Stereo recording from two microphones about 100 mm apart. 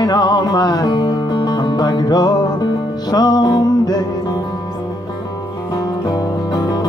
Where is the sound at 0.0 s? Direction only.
45° left (ahead or behind).